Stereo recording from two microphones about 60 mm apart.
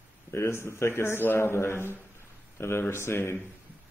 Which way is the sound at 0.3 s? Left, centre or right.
Left.